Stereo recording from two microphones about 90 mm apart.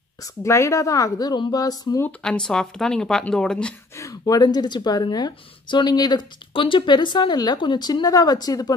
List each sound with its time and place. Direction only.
0.2 s a woman's voice: 35° left (ahead or behind)
2.2 s speech: 5° left (ahead or behind)
3.9 s speech: 40° left (ahead or behind)
6.5 s speech: 70° left (ahead or behind); by 8.7 s 45° left (ahead or behind)